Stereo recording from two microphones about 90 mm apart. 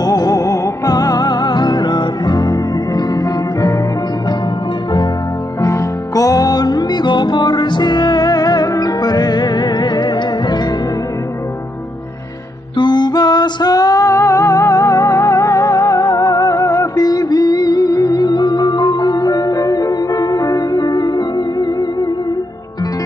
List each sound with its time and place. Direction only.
0.0 s music: 45° left (ahead or behind)
5.6 s music: 40° left (ahead or behind)
12.7 s music: 55° left (ahead or behind)